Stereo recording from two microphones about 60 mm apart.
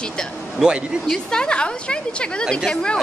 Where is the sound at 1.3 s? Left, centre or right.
Centre.